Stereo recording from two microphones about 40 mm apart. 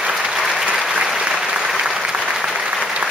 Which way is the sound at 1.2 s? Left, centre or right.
Right.